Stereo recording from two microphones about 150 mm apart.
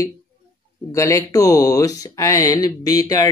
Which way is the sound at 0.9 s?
20° left (ahead or behind).